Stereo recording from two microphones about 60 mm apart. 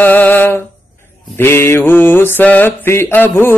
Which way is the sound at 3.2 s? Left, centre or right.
Left.